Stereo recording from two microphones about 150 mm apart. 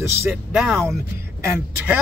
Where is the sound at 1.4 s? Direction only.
15° right (ahead or behind).